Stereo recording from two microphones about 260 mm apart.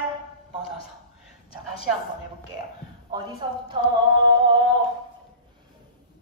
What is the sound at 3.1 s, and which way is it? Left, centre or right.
Speech, centre.